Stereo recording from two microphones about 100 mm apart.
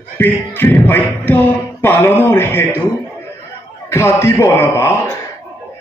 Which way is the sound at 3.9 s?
25° left (ahead or behind).